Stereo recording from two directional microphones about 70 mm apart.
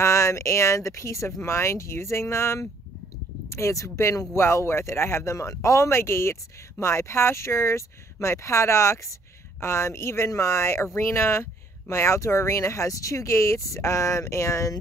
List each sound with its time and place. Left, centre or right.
0.0 s speech: left